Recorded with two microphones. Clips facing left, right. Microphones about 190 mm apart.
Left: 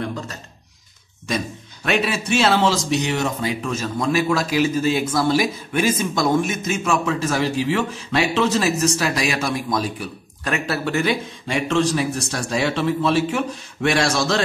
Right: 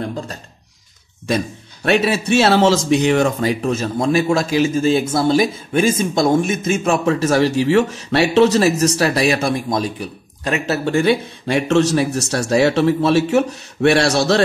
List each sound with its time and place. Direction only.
0.0 s speech: 35° right (ahead or behind)
1.9 s speech: 40° right (ahead or behind)